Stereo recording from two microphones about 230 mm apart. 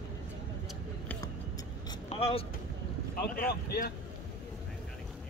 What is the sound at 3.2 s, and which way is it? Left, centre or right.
Speech, left.